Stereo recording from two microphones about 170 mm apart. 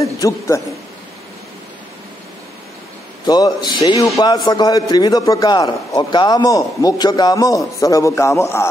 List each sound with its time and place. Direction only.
0.0 s a man's voice: 20° left (ahead or behind)
3.3 s a man's voice: 25° left (ahead or behind)